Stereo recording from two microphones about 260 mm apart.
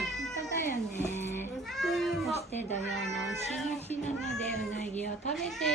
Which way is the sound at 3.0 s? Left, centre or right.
Centre.